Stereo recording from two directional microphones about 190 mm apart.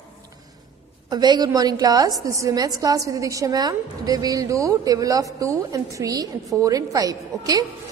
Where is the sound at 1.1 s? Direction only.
20° right (ahead or behind).